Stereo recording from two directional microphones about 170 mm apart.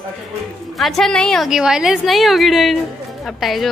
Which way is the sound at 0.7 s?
Centre (ahead or behind).